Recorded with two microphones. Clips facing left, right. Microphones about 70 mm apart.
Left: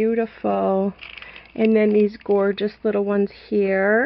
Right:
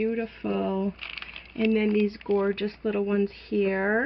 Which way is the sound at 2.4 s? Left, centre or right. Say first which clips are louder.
Left 6 dB; left.